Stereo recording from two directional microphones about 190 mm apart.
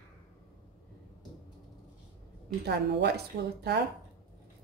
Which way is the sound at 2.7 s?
60° right (ahead or behind).